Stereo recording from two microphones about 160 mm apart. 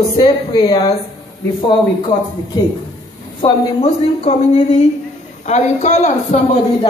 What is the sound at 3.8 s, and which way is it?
A woman's voice, 45° left (ahead or behind).